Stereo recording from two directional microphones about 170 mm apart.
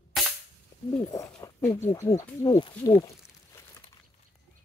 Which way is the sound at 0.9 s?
20° left (ahead or behind).